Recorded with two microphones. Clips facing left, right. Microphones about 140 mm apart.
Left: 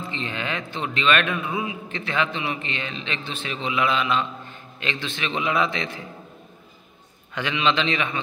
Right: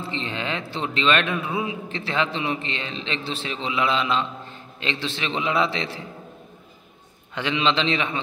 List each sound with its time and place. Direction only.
0.0 s a man's voice: 30° right (ahead or behind)
7.3 s a man's voice: 25° right (ahead or behind)